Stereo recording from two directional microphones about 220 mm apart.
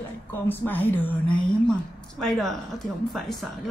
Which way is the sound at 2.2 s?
Centre (ahead or behind).